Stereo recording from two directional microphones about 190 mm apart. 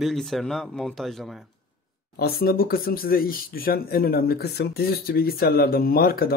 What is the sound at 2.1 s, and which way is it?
Speech, 55° left (ahead or behind).